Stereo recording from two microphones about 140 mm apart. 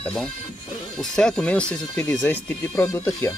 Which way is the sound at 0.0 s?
5° left (ahead or behind).